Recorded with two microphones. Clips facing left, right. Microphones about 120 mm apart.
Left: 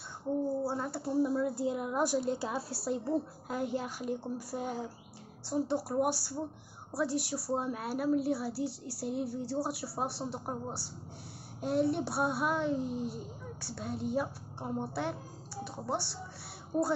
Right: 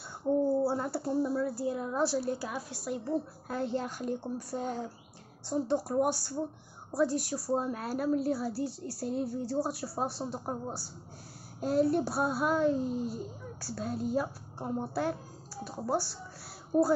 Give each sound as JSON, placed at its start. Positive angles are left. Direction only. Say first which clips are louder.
{"t": 0.7, "sound": "speech", "louder": "right 3 dB", "side_deg": -5}
{"t": 1.1, "sound": "a woman's voice", "louder": "left 2 dB", "side_deg": 15}
{"t": 3.4, "sound": "a woman's voice", "louder": "right 1 dB", "side_deg": 15}